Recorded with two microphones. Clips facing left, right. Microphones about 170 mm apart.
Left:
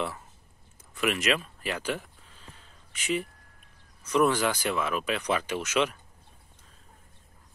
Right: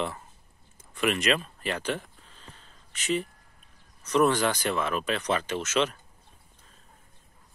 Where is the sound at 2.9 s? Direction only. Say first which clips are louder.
Right 1 dB; 10° left (ahead or behind).